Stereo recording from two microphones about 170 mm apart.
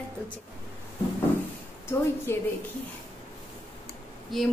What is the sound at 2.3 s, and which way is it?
Speech, 15° left (ahead or behind).